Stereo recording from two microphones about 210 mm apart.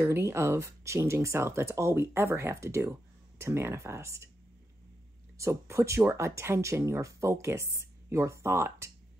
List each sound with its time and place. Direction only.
0.0 s speech: 10° right (ahead or behind)
5.4 s speech: 15° right (ahead or behind)